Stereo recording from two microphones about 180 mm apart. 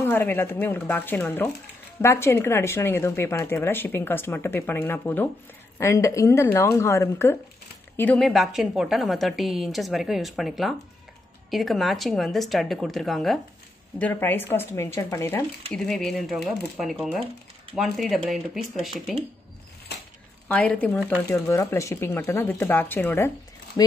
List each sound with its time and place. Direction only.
0.0 s a woman's voice: 10° left (ahead or behind)
15.7 s a woman's voice: 5° left (ahead or behind)
20.4 s speech: 5° left (ahead or behind)